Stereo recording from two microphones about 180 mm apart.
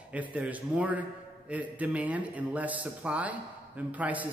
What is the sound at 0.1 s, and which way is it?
A man's voice, 10° right (ahead or behind).